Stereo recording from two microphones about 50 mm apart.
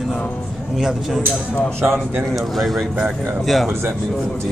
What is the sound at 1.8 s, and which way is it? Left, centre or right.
Speech, right.